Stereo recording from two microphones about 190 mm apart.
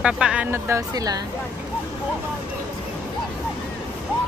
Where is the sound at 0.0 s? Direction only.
5° right (ahead or behind).